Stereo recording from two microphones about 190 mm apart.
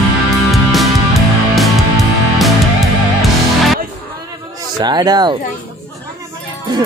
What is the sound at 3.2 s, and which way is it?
Music, centre (ahead or behind).